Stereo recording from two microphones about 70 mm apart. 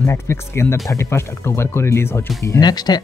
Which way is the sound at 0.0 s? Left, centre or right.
Left.